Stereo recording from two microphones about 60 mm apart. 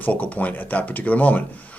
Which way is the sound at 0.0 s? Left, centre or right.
Left.